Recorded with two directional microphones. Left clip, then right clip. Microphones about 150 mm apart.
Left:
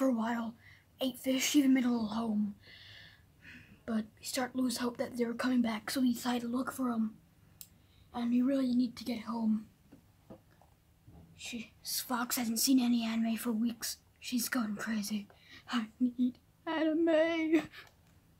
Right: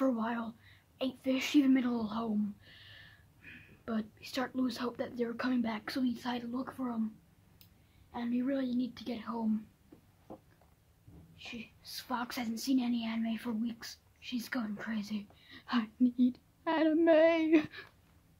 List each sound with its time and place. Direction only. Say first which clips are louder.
0.0 s speech: left 1 dB; 5° right (ahead or behind); by 7.0 s 15° left (ahead or behind)
8.1 s a woman's voice: left 3 dB; centre (ahead or behind)
11.3 s a woman's voice: left 2 dB; 5° left (ahead or behind)
15.4 s speech: right 3 dB; 20° right (ahead or behind)